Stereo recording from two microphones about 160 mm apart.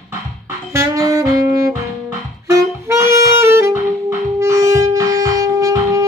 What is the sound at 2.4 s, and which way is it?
Music, 20° right (ahead or behind).